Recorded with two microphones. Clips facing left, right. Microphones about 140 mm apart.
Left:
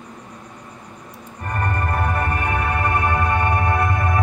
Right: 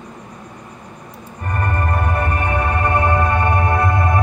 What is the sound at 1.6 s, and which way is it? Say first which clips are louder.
Music: right 1 dB; 20° right (ahead or behind).